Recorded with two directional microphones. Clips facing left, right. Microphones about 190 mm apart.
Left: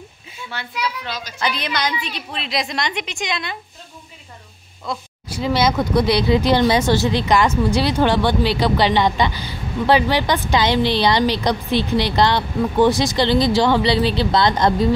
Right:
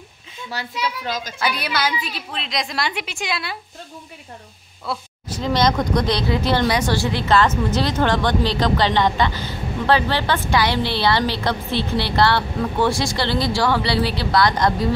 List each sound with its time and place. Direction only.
0.5 s a child's voice: 40° right (ahead or behind)
1.4 s a woman's voice: 10° right (ahead or behind)
4.9 s a woman's voice: 5° right (ahead or behind)
5.3 s speech: 5° left (ahead or behind); by 14.7 s 25° left (ahead or behind)